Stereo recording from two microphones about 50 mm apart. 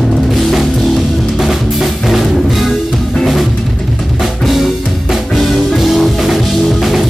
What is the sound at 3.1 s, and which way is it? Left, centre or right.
Drum kit, centre.